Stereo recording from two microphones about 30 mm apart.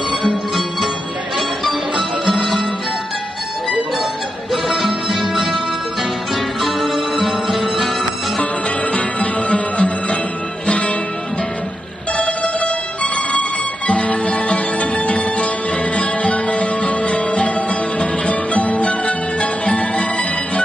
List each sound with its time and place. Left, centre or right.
0.1 s music: centre
4.5 s music: centre
6.6 s music: centre
8.4 s music: left
12.2 s music: left